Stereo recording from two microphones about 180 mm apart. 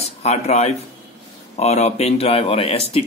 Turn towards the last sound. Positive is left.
turn(degrees=35)  # may be behind; listen again after turning